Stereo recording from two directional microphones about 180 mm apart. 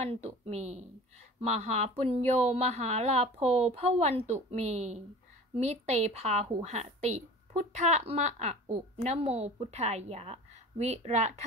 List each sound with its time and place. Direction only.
0.0 s a woman's voice: 35° right (ahead or behind)